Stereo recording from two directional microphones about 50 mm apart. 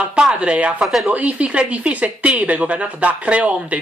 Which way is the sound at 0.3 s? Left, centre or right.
Right.